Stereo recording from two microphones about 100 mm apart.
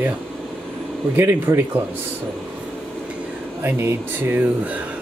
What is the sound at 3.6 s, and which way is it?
Speech, 20° right (ahead or behind).